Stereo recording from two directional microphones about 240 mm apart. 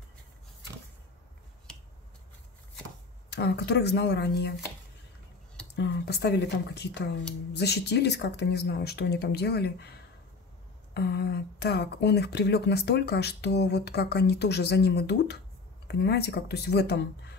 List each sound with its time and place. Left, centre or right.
3.3 s speech: left
5.8 s speech: left